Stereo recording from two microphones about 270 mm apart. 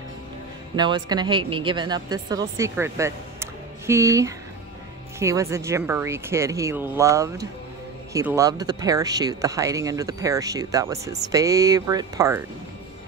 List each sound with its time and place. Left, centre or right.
0.7 s speech: centre